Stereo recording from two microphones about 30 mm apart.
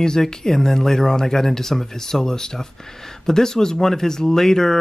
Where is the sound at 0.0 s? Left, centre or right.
Left.